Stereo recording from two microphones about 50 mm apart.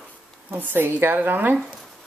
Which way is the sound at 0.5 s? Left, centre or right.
Right.